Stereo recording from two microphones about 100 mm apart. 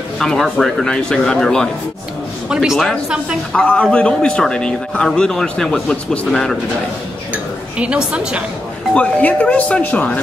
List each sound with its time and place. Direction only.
0.2 s speech: 5° left (ahead or behind)
2.5 s speech: 5° right (ahead or behind)
3.5 s speech: 15° left (ahead or behind)
7.7 s a woman's voice: 10° right (ahead or behind)
8.9 s speech: 15° left (ahead or behind)